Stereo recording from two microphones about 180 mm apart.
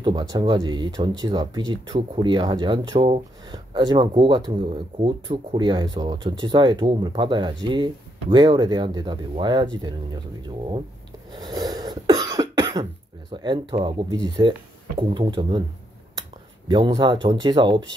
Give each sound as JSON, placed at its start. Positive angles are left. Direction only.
{"t": 0.0, "sound": "speech", "side_deg": -20}
{"t": 11.3, "sound": "cough", "side_deg": -20}
{"t": 13.3, "sound": "speech", "side_deg": -25}
{"t": 16.6, "sound": "speech", "side_deg": -25}